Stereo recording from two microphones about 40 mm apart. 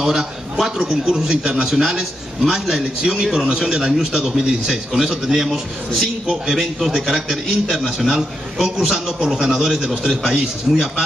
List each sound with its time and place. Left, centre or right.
0.0 s a man's voice: centre